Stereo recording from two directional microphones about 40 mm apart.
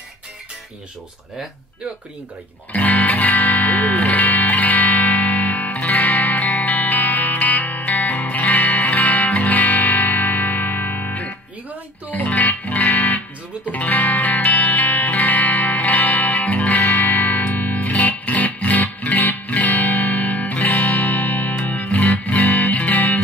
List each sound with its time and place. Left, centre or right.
2.7 s music: left